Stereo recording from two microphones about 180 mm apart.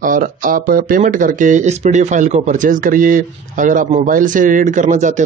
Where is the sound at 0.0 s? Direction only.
50° right (ahead or behind).